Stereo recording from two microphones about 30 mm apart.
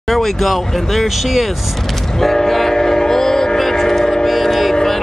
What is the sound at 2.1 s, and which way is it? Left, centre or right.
Train, centre.